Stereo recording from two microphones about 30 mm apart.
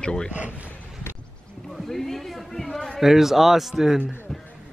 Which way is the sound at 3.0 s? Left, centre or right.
Centre.